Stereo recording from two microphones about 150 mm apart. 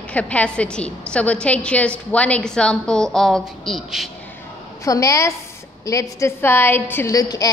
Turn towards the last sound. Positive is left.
turn(degrees=25)  # may be behind; listen again after turning